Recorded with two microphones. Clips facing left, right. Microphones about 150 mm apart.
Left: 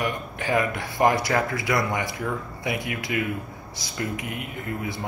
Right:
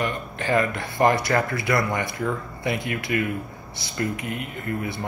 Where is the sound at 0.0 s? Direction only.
15° left (ahead or behind).